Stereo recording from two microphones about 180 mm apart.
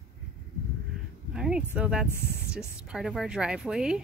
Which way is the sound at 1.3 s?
5° right (ahead or behind).